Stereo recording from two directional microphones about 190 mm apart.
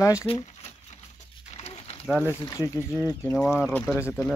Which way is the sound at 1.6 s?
35° left (ahead or behind).